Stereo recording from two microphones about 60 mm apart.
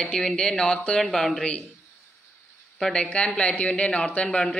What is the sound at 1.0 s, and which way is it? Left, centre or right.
Speech, centre.